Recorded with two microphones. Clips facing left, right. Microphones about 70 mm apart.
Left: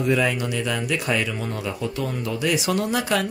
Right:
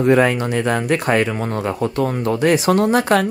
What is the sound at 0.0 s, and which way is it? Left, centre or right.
Speech, right.